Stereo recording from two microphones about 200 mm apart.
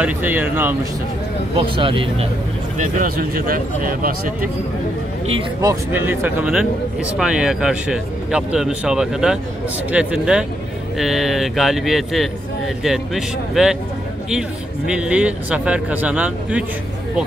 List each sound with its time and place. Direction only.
0.0 s speech: 10° right (ahead or behind)
1.8 s speech: 25° right (ahead or behind)
2.8 s speech: 45° right (ahead or behind)
5.6 s speech: 15° right (ahead or behind)
14.9 s speech: 5° right (ahead or behind)